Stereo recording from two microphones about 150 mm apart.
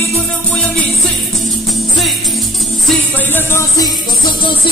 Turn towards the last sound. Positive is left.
turn(degrees=25)  # may be behind; listen again after turning